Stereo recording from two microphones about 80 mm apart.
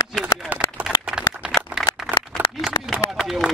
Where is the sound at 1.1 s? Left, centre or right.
Centre.